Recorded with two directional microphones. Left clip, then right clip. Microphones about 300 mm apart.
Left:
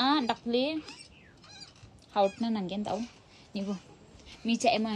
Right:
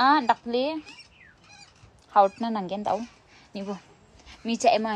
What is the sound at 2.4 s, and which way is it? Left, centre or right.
Speech, centre.